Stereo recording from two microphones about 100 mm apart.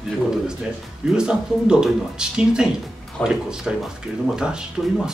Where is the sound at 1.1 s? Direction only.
5° right (ahead or behind).